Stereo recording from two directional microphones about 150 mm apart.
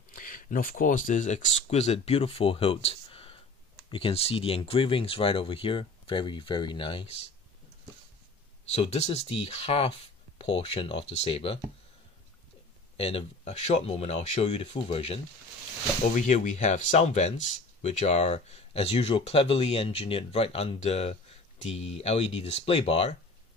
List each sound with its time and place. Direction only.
0.1 s speech: 65° left (ahead or behind); by 7.2 s 35° left (ahead or behind)
8.7 s speech: 45° left (ahead or behind)
12.9 s speech: 40° left (ahead or behind)
16.2 s speech: 55° left (ahead or behind)